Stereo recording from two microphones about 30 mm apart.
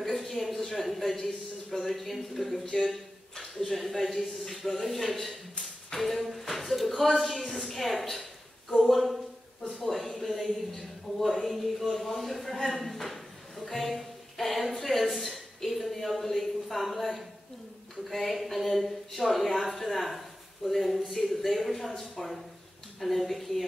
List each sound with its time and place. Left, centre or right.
0.0 s a sound: centre
0.8 s speech: centre
2.6 s speech: centre
2.9 s speech: centre
13.7 s music: centre
14.8 s a woman's voice: centre
18.1 s speech: centre